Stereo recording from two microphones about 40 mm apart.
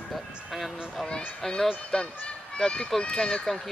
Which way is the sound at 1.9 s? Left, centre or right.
Centre.